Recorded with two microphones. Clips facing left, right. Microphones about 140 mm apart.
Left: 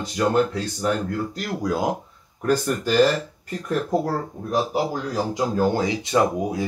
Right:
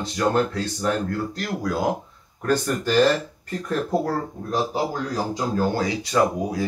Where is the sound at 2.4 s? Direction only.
5° left (ahead or behind).